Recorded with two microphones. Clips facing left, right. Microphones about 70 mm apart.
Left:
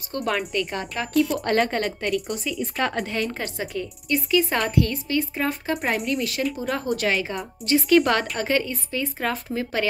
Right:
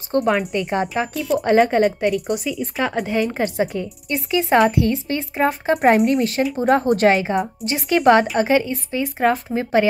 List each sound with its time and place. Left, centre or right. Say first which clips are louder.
0.2 s a woman's voice: right 3 dB; centre
0.7 s a woman's voice: right 8 dB; right
1.1 s speech: left 4 dB; centre
1.4 s a woman's voice: right 7 dB; centre
3.3 s a woman's voice: right 9 dB; right
5.7 s speech: right 13 dB; right
7.6 s a woman's voice: right 1 dB; right